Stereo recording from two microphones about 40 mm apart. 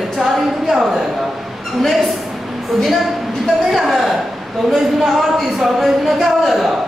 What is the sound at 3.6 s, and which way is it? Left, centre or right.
Speech, centre.